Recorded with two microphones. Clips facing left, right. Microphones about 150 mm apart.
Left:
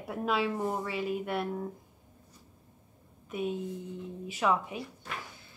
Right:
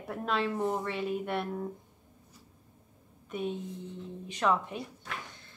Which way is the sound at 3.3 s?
5° left (ahead or behind).